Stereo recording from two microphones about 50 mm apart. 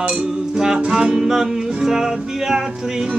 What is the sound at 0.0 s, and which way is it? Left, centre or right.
Music, centre.